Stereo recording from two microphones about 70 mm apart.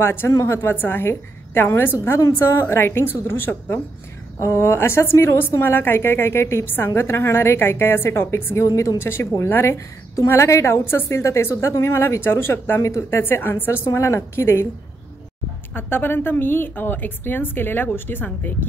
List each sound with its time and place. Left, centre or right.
0.0 s a woman's voice: left
9.0 s a woman's voice: left
12.8 s speech: left
13.2 s a woman's voice: left
15.7 s a woman's voice: left